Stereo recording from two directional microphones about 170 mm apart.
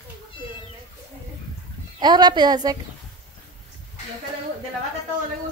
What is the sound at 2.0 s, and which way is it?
Speech, 25° right (ahead or behind).